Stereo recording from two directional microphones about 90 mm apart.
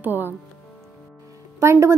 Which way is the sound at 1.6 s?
30° right (ahead or behind).